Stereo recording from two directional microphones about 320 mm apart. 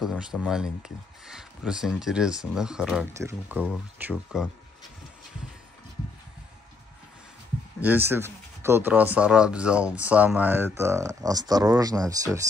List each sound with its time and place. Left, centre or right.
0.0 s speech: centre
7.8 s speech: centre